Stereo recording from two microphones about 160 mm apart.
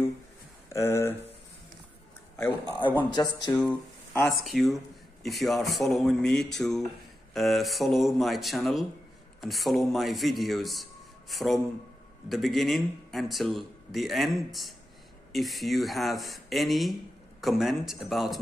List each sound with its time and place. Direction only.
0.7 s speech: 15° left (ahead or behind)
2.3 s speech: 15° left (ahead or behind)
3.1 s speech: 25° left (ahead or behind)
4.3 s a man's voice: centre (ahead or behind)